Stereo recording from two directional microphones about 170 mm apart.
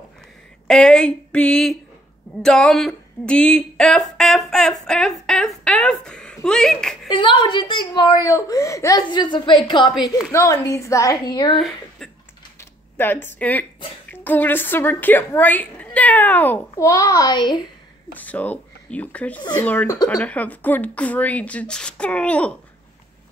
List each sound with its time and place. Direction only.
0.7 s speech: 5° left (ahead or behind)
7.1 s speech: 25° left (ahead or behind)
11.5 s speech: 5° left (ahead or behind)
12.5 s a sound: 10° left (ahead or behind)
14.0 s a woman's voice: 10° left (ahead or behind)
18.1 s a woman's voice: 10° left (ahead or behind)
19.9 s speech: 20° left (ahead or behind)
20.2 s a woman's voice: 10° left (ahead or behind)